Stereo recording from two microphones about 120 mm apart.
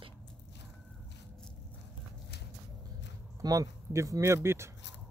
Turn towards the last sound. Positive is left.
turn(degrees=-20)  # may be behind; listen again after turning